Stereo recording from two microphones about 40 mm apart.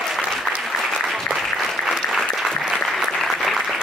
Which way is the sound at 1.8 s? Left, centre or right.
Centre.